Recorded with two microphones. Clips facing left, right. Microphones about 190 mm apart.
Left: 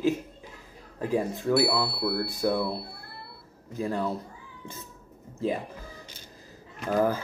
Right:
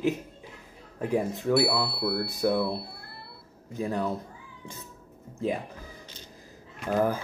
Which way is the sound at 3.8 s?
15° right (ahead or behind).